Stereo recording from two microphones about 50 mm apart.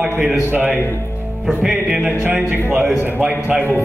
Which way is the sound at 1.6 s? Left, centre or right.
Centre.